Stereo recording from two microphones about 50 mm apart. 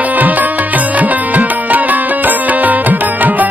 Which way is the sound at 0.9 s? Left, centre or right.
Right.